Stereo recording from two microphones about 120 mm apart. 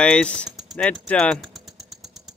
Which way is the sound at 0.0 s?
10° left (ahead or behind).